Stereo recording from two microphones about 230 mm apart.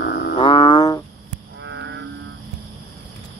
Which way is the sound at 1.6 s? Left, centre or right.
Right.